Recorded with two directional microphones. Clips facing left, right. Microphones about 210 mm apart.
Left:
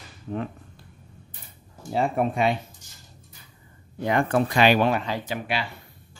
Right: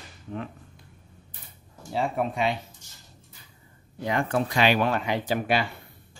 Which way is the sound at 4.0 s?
55° left (ahead or behind).